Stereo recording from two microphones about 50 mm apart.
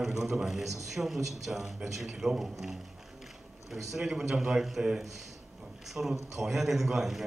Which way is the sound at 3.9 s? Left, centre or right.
Centre.